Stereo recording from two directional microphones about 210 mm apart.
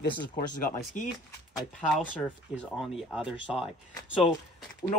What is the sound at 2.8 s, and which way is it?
Speech, 5° right (ahead or behind).